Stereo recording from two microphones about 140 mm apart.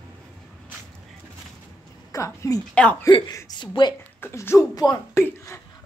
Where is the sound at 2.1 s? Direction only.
20° left (ahead or behind).